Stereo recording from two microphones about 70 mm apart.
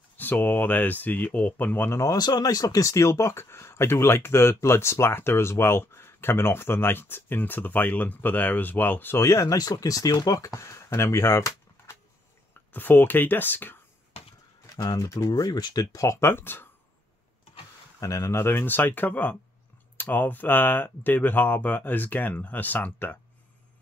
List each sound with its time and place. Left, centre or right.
0.2 s speech: left
1.9 s speech: left
2.1 s speech: left
9.1 s speech: left
10.5 s speech: left
12.7 s speech: left
14.8 s speech: left
18.0 s speech: left